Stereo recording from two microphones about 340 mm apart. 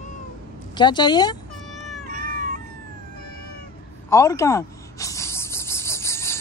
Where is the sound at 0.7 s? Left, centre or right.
Centre.